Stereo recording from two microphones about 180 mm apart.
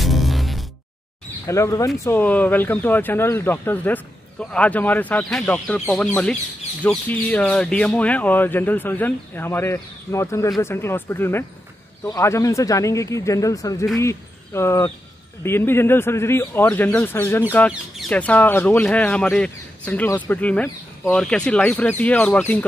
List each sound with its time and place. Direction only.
0.0 s music: centre (ahead or behind)
1.5 s speech: 15° left (ahead or behind)
6.8 s speech: 10° left (ahead or behind)